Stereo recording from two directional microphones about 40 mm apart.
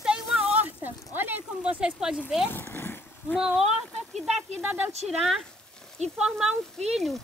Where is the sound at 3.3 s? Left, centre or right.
Centre.